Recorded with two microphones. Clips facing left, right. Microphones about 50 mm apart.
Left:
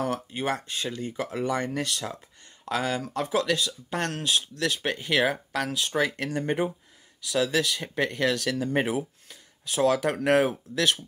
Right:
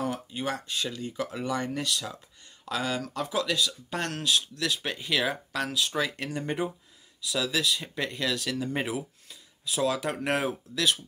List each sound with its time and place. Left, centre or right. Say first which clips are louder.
0.3 s speech: left 3 dB; left
2.7 s speech: left 3 dB; left